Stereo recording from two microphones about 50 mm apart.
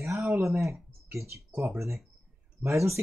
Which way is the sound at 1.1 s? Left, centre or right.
Right.